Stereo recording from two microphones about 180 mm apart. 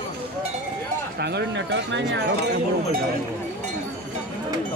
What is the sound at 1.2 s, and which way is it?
Speech, 75° right (ahead or behind).